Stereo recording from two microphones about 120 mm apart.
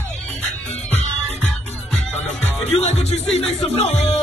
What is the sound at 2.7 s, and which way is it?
Music, 65° left (ahead or behind).